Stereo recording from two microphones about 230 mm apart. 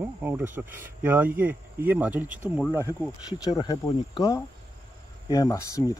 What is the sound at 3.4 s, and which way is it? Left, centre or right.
Speech, centre.